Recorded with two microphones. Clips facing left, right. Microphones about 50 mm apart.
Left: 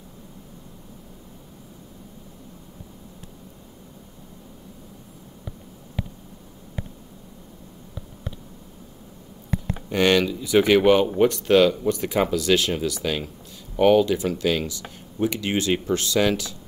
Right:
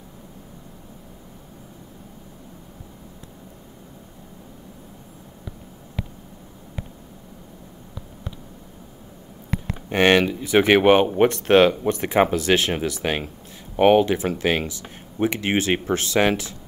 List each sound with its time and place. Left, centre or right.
9.8 s speech: right